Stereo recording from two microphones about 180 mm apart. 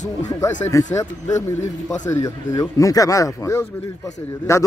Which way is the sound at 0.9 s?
20° left (ahead or behind).